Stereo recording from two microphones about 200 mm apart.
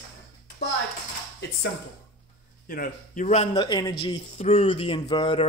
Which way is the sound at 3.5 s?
20° left (ahead or behind).